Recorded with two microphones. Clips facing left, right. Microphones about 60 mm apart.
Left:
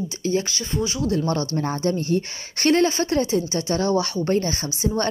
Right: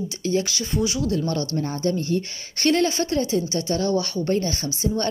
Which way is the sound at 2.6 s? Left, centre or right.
Centre.